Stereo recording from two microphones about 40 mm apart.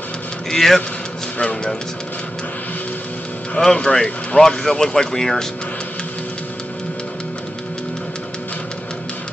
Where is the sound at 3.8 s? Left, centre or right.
Centre.